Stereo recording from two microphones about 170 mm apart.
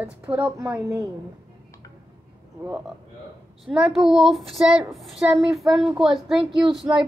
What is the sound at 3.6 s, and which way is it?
A woman's voice, 5° right (ahead or behind).